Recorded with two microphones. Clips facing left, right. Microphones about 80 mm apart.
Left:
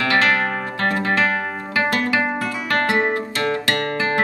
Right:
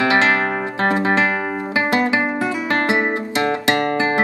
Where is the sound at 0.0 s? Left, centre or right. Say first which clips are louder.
Right 2 dB; right.